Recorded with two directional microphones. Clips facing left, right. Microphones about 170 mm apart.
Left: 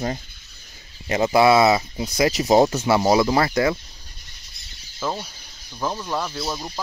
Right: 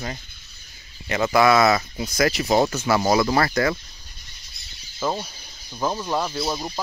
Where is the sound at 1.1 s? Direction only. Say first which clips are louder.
Left 2 dB; 25° left (ahead or behind).